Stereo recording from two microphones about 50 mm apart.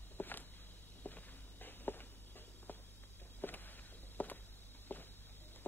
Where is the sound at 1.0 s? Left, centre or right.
Left.